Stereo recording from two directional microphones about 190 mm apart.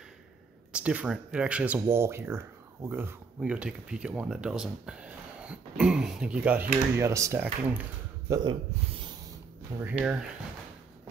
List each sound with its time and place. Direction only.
0.7 s speech: 5° right (ahead or behind)
9.7 s speech: 15° right (ahead or behind)